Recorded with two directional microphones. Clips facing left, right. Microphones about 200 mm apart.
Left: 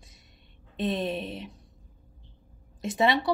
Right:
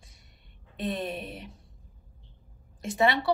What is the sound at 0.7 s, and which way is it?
Speech, 20° left (ahead or behind).